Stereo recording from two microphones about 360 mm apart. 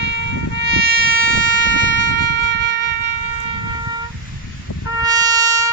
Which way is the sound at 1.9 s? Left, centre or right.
Right.